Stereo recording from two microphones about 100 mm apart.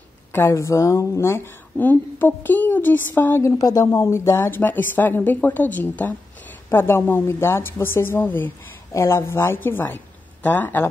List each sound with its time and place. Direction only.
0.3 s a woman's voice: 25° left (ahead or behind)
3.5 s a woman's voice: 35° left (ahead or behind); by 10.9 s 20° left (ahead or behind)